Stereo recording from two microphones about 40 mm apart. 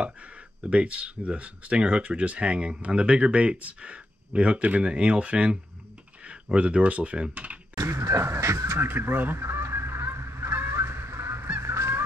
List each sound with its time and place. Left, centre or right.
0.7 s speech: right
8.2 s goose: right